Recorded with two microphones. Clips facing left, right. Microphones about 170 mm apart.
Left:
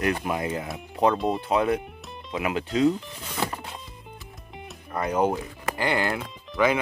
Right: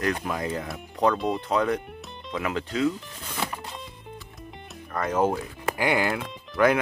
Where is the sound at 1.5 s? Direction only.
15° left (ahead or behind).